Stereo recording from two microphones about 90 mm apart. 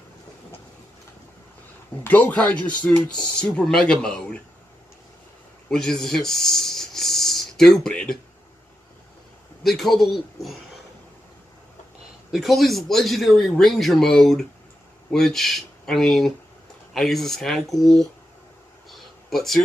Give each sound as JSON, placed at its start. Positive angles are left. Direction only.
{"t": 2.0, "sound": "speech", "side_deg": 20}
{"t": 5.7, "sound": "speech", "side_deg": 5}
{"t": 9.6, "sound": "speech", "side_deg": 0}
{"t": 12.3, "sound": "speech", "side_deg": 0}
{"t": 18.9, "sound": "a sound", "side_deg": 0}